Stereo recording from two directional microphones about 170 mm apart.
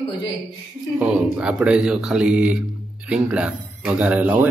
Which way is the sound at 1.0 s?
10° right (ahead or behind).